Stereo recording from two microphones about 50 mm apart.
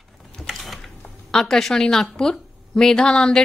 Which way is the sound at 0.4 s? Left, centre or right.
Centre.